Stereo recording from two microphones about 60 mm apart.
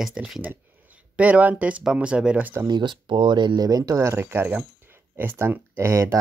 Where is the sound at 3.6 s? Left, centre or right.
Right.